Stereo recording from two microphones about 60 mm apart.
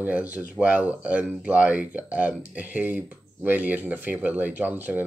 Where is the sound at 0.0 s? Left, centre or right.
Right.